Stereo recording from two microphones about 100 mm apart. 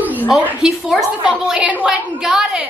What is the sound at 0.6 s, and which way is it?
A woman's voice, 5° right (ahead or behind).